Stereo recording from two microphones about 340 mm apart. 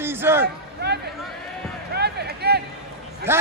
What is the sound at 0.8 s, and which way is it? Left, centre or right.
Speech, right.